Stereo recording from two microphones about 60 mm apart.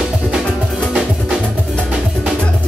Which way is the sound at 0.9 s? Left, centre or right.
Centre.